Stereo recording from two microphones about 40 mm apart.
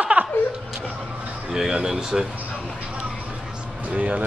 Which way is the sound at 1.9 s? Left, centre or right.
Centre.